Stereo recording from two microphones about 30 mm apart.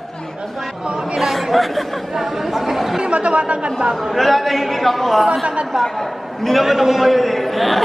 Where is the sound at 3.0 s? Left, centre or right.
Right.